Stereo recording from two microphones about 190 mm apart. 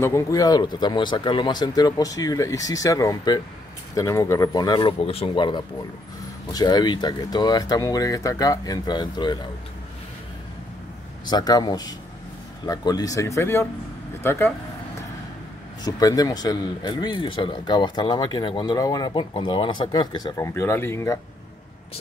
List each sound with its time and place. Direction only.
0.0 s speech: 15° left (ahead or behind)
11.2 s speech: 20° left (ahead or behind)
15.8 s speech: 20° left (ahead or behind)